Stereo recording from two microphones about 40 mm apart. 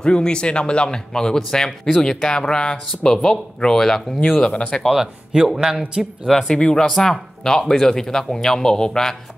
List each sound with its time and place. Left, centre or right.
0.0 s a man's voice: left
5.0 s speech: centre
6.2 s speech: centre